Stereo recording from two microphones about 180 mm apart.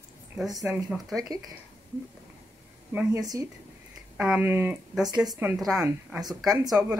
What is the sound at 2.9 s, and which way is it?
Speech, 20° right (ahead or behind).